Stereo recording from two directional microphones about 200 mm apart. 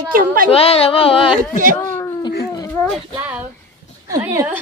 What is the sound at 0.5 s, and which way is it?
Speech, 30° left (ahead or behind).